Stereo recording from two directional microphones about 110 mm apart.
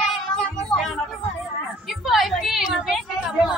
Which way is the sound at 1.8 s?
Centre (ahead or behind).